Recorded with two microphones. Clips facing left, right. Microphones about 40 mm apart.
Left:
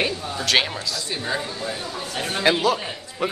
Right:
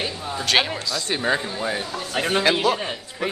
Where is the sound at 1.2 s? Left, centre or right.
Right.